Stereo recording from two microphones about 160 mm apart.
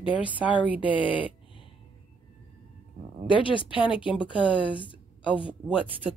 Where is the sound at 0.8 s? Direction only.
30° left (ahead or behind).